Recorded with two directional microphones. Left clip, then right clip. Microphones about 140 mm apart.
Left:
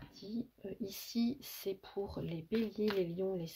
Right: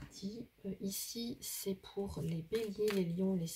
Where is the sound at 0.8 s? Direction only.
40° left (ahead or behind).